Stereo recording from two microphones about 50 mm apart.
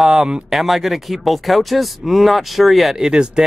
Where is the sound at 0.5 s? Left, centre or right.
Centre.